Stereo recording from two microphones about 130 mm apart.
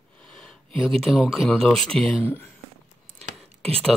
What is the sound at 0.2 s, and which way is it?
Speech, 10° left (ahead or behind).